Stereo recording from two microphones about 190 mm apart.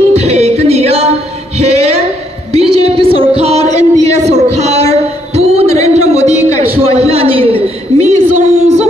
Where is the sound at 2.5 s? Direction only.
30° right (ahead or behind).